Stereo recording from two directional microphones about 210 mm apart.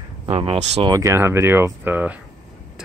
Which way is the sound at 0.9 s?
15° right (ahead or behind).